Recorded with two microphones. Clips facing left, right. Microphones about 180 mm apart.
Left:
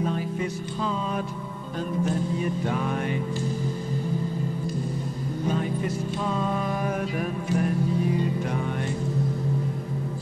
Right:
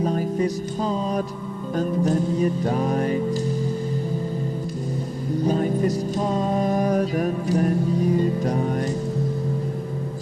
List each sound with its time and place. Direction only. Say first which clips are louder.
0.0 s music: right 5 dB; 40° right (ahead or behind)
5.4 s music: right 6 dB; 40° right (ahead or behind)